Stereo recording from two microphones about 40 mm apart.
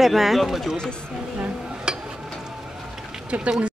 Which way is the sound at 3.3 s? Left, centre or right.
Right.